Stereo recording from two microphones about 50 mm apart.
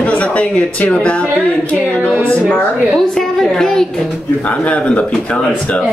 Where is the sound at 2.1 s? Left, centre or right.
Right.